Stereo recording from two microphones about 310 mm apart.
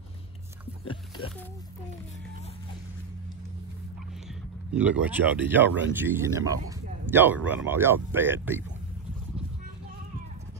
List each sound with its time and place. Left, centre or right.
0.8 s oink: centre
4.3 s speech: centre